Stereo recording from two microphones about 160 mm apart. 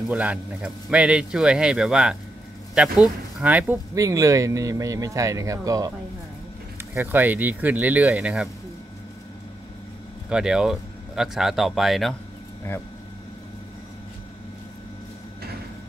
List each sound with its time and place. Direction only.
0.1 s a man's voice: 10° right (ahead or behind)
3.9 s speech: 20° right (ahead or behind)
10.3 s a man's voice: 5° right (ahead or behind)